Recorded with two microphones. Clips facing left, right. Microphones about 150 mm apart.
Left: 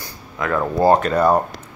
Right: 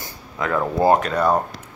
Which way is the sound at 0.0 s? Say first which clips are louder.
Left 1 dB; 20° right (ahead or behind).